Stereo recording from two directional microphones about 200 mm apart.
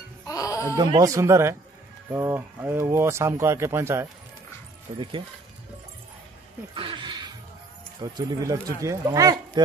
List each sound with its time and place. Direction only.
0.3 s music: 15° left (ahead or behind)
0.7 s speech: 15° right (ahead or behind)
4.9 s speech: 25° right (ahead or behind)
6.7 s a sound: 25° right (ahead or behind)
8.0 s speech: 20° right (ahead or behind)